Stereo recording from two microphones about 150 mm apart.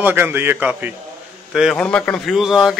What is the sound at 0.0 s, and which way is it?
A man's voice, 15° right (ahead or behind).